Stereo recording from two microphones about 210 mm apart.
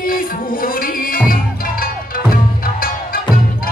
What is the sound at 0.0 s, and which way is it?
Music, 45° left (ahead or behind).